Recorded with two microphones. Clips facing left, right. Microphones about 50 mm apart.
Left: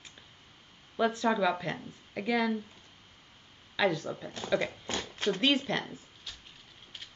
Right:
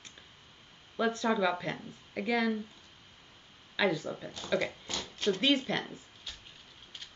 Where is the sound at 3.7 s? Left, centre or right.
Centre.